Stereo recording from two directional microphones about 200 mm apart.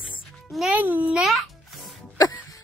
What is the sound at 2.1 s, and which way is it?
Music, 20° left (ahead or behind).